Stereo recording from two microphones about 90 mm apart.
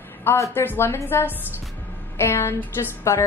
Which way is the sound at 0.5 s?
25° left (ahead or behind).